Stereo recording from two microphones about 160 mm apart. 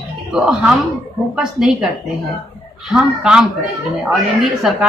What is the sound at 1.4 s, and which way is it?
Speech, 5° right (ahead or behind).